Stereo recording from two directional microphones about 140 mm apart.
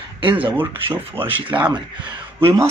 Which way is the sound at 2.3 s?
20° right (ahead or behind).